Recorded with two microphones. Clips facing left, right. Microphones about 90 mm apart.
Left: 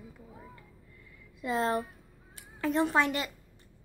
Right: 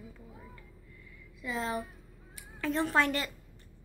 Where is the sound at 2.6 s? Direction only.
25° left (ahead or behind).